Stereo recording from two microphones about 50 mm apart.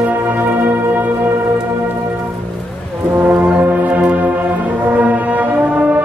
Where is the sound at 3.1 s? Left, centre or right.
Right.